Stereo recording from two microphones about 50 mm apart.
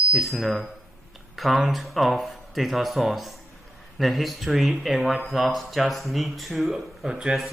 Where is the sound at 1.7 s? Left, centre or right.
Centre.